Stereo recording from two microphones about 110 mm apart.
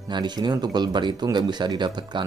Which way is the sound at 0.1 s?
40° right (ahead or behind).